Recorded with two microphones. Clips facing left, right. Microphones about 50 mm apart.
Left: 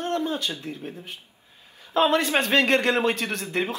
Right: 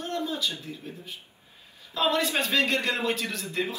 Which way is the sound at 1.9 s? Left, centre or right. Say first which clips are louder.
Left 5 dB; left.